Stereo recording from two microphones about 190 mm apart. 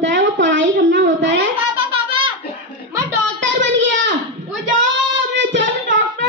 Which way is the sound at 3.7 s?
70° right (ahead or behind).